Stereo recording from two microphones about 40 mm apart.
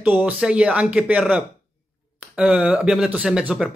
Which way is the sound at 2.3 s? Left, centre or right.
Right.